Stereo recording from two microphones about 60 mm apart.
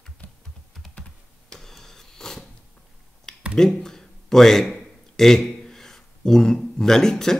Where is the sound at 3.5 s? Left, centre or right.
Centre.